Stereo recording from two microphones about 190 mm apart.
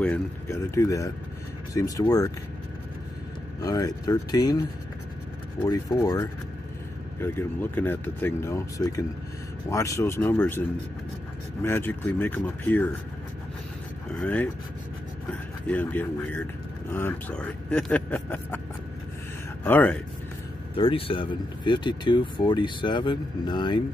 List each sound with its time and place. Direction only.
0.0 s speech: 10° left (ahead or behind)
3.6 s speech: 20° left (ahead or behind)
5.7 s speech: 20° left (ahead or behind)
11.6 s speech: 10° left (ahead or behind)
14.1 s speech: 10° left (ahead or behind)
15.6 s speech: 10° left (ahead or behind)
19.6 s speech: 10° left (ahead or behind)
20.7 s speech: 30° left (ahead or behind)